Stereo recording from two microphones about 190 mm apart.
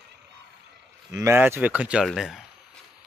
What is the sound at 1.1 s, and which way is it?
Speech, 15° right (ahead or behind).